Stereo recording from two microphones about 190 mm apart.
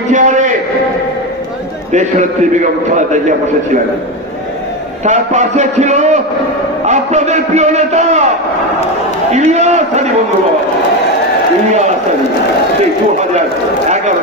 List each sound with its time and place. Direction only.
0.1 s a man's voice: 40° right (ahead or behind)
1.9 s a man's voice: 40° right (ahead or behind)
5.0 s a man's voice: 40° right (ahead or behind)
9.3 s a man's voice: 35° right (ahead or behind)